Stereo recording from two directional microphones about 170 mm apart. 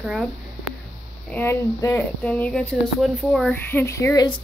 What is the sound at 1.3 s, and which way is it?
Speech, 15° left (ahead or behind).